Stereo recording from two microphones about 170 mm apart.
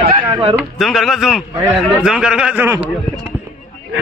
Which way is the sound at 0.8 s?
Centre (ahead or behind).